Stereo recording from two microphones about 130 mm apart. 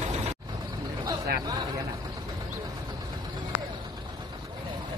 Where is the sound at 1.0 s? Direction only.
30° right (ahead or behind).